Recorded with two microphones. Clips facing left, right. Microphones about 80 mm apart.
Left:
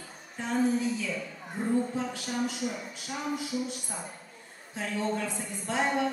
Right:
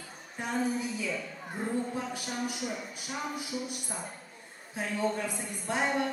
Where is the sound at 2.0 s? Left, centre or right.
Centre.